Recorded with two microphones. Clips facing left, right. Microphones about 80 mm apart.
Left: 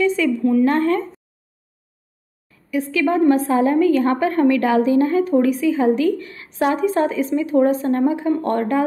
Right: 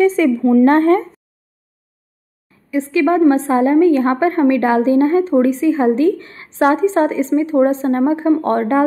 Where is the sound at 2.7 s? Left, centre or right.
Right.